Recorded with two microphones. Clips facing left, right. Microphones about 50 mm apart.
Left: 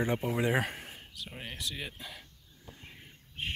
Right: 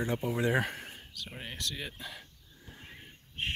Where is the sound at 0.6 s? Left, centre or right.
Centre.